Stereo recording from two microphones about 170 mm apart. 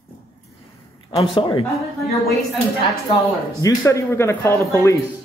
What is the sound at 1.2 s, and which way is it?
Speech, 30° left (ahead or behind).